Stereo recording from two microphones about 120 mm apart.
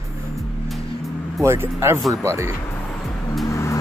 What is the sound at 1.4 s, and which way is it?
Speech, 20° right (ahead or behind).